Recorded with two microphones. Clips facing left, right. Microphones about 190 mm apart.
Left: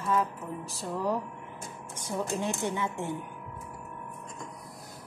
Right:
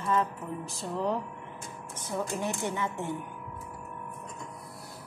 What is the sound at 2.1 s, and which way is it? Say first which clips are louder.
Music: left 1 dB; 15° left (ahead or behind).